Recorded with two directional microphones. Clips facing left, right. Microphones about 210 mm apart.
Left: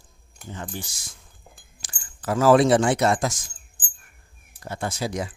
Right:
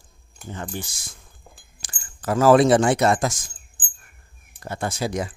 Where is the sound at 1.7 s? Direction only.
50° right (ahead or behind).